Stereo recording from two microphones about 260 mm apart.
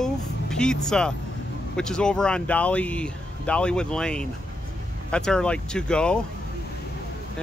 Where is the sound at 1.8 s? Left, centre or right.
Centre.